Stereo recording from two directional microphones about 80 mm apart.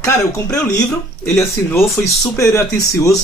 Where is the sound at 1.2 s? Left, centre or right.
Left.